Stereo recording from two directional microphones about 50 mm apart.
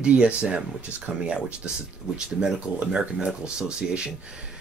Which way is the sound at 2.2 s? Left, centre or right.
Centre.